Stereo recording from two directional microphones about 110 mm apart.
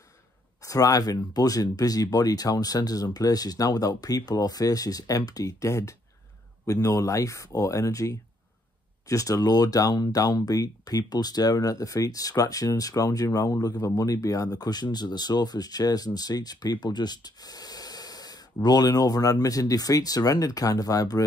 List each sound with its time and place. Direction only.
0.6 s speech: 30° left (ahead or behind)